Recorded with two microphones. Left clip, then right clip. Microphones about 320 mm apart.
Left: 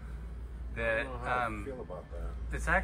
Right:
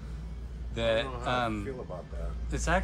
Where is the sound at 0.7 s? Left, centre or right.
Centre.